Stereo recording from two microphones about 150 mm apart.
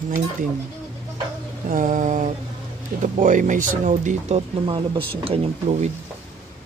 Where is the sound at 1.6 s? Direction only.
60° right (ahead or behind).